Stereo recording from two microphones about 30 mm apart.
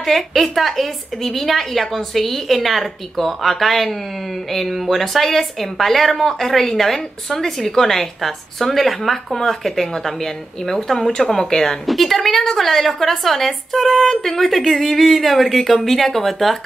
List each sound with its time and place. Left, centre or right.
0.0 s a woman's voice: centre
11.5 s a woman's voice: centre
11.8 s a woman's voice: centre
14.5 s a woman's voice: centre